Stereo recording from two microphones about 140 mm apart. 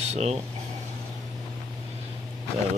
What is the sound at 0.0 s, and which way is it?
Speech, 50° right (ahead or behind).